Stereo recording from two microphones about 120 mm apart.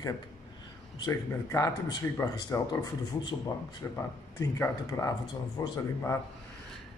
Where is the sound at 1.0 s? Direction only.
25° left (ahead or behind).